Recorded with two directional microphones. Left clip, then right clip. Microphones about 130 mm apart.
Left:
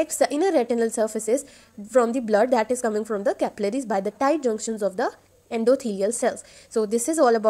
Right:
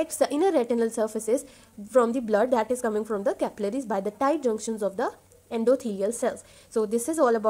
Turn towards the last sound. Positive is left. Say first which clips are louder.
# left 3 dB
turn(degrees=35)  # may be behind; listen again after turning